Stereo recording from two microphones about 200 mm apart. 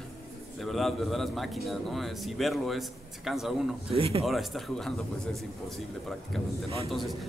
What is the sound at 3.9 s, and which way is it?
Speech, 25° right (ahead or behind).